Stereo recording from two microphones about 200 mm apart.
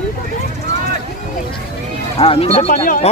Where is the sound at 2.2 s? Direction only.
30° left (ahead or behind).